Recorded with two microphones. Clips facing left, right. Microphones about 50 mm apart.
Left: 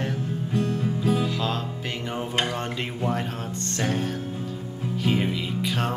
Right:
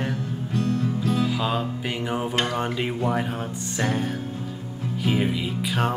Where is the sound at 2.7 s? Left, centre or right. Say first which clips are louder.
Right 3 dB; centre.